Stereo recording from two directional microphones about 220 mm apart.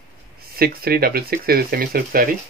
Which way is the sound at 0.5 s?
45° right (ahead or behind).